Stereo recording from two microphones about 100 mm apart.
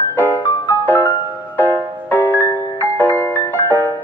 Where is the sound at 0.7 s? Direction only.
20° left (ahead or behind).